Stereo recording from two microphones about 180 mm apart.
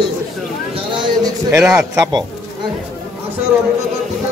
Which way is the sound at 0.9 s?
25° right (ahead or behind).